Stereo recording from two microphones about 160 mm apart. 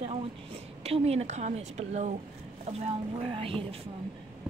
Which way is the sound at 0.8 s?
40° right (ahead or behind).